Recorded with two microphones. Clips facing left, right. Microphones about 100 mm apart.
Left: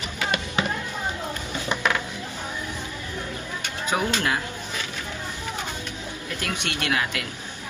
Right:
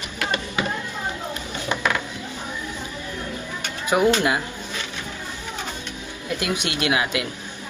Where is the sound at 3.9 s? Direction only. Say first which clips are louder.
Right 6 dB; 10° right (ahead or behind).